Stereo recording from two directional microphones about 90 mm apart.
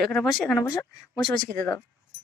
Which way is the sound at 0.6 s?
40° left (ahead or behind).